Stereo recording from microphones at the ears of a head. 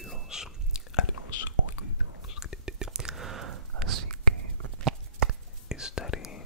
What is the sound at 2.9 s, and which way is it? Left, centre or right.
Whispering, right.